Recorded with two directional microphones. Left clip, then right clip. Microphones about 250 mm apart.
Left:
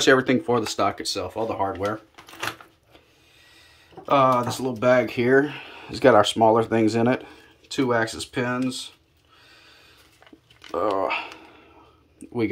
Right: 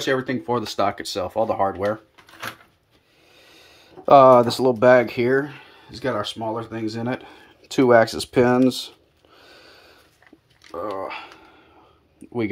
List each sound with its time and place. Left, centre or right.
0.0 s speech: centre
3.5 s speech: right; by 7.1 s centre
7.6 s speech: right
9.4 s snort: right
10.7 s speech: centre